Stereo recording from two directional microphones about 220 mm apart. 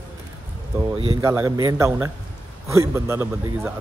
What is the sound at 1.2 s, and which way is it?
Speech, 15° right (ahead or behind).